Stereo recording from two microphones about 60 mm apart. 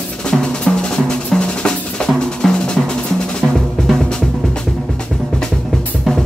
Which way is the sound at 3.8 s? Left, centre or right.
Centre.